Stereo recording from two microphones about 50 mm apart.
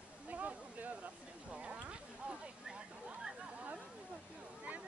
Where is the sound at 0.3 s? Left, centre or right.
Right.